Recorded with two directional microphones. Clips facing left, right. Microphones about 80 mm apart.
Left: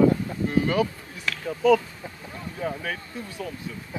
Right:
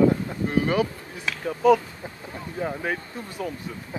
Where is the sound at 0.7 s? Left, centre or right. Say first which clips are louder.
Right 1 dB; right.